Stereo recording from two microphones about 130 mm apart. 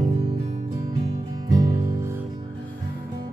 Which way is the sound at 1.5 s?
25° right (ahead or behind).